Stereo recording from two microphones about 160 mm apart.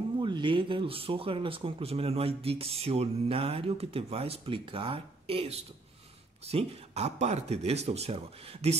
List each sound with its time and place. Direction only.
0.2 s speech: 30° right (ahead or behind)